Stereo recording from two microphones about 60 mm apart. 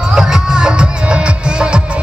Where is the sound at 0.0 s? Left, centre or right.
Centre.